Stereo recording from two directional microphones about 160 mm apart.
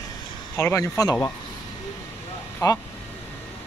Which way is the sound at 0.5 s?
20° left (ahead or behind).